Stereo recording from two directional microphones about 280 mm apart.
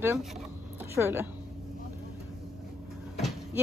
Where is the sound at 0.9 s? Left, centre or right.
Centre.